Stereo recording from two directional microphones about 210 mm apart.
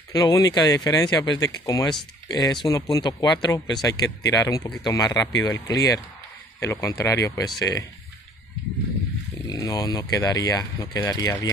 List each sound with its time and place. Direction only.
0.1 s speech: 15° left (ahead or behind)
9.5 s speech: 15° left (ahead or behind)